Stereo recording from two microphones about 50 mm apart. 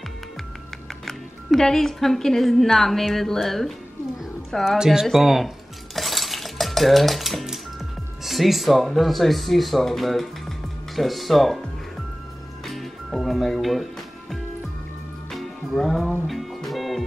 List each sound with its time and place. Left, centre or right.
1.0 s speech: centre
4.6 s speech: centre
5.9 s dishes: centre
8.2 s speech: centre
12.6 s music: centre
15.3 s music: centre